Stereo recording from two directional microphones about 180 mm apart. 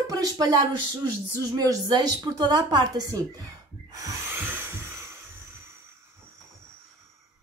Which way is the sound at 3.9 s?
15° right (ahead or behind).